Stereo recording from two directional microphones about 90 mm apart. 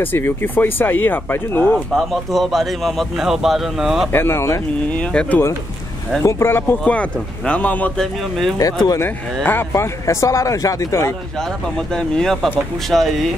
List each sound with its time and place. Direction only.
0.0 s speech: 25° left (ahead or behind)
2.0 s speech: centre (ahead or behind)
4.1 s speech: 25° left (ahead or behind)
4.9 s speech: 10° left (ahead or behind)
6.2 s speech: 25° left (ahead or behind)
6.8 s speech: 15° left (ahead or behind)
8.0 s speech: 5° left (ahead or behind)
9.0 s speech: 25° left (ahead or behind)
11.9 s speech: 5° left (ahead or behind)
12.9 s speech: 5° right (ahead or behind)